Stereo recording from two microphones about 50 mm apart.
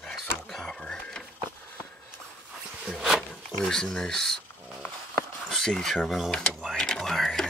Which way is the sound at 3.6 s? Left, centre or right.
Centre.